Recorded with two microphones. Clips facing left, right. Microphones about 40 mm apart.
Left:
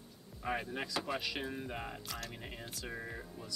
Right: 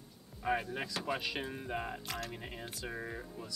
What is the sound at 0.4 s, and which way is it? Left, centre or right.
Speech, centre.